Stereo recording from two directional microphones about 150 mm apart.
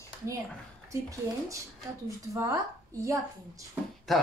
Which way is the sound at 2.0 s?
20° right (ahead or behind).